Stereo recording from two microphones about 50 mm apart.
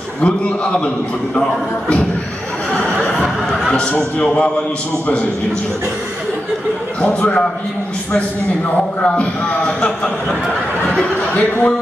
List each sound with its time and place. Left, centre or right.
0.2 s a man's voice: left
2.7 s a sound: centre
3.9 s a man's voice: left
7.0 s a man's voice: left
9.0 s a man's voice: left
11.1 s speech: left